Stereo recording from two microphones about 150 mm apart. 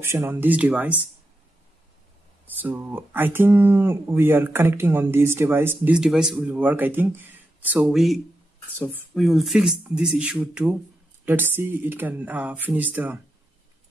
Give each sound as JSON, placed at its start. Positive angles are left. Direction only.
{"t": 0.0, "sound": "speech", "side_deg": -15}
{"t": 2.5, "sound": "speech", "side_deg": -10}
{"t": 8.6, "sound": "speech", "side_deg": 10}
{"t": 9.2, "sound": "speech", "side_deg": 0}